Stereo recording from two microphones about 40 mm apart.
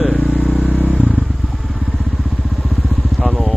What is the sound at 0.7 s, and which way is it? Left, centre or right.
Vehicle, right.